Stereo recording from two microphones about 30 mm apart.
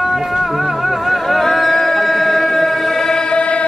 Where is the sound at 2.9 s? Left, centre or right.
Left.